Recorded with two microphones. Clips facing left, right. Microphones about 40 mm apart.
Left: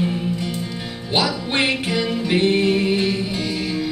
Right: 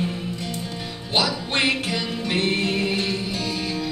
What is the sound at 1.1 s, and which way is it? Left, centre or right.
Music, centre.